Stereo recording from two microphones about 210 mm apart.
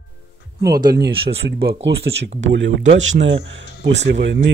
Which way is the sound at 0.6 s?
20° right (ahead or behind).